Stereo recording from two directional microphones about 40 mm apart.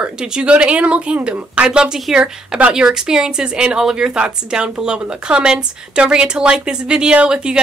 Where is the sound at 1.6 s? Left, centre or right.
Centre.